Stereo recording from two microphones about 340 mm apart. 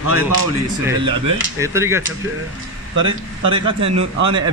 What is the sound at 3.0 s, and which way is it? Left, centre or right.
Speech, centre.